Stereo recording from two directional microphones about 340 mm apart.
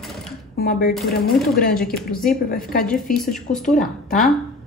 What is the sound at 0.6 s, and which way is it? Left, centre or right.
Speech, left.